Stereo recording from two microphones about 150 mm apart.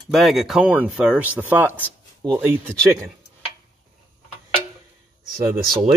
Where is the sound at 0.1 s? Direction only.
Centre (ahead or behind); by 3.1 s 15° right (ahead or behind).